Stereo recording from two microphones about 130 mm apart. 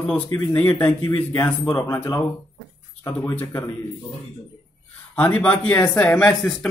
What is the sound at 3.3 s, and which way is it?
Speech, 10° left (ahead or behind).